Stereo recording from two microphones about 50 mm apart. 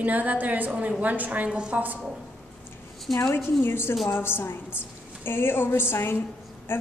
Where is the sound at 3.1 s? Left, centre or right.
Centre.